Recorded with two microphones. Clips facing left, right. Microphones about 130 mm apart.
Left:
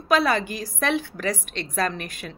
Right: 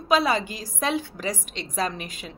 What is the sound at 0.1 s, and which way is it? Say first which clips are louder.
A woman's voice: left 1 dB; 20° right (ahead or behind).